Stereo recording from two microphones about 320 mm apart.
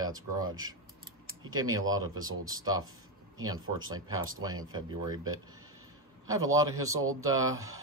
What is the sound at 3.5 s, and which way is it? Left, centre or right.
Speech, right.